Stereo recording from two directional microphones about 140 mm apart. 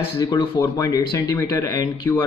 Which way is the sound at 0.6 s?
25° left (ahead or behind).